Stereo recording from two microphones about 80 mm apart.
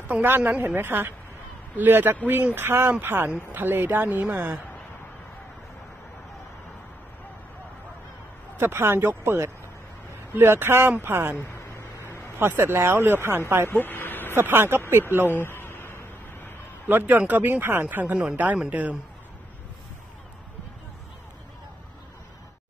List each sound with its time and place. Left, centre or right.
0.1 s speech: right
8.5 s speech: right
11.7 s vehicle: left
12.4 s speech: right
13.7 s speech: left
14.3 s speech: right
15.3 s a sound: left
16.8 s speech: right